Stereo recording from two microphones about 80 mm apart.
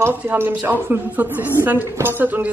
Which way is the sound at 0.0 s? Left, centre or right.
Right.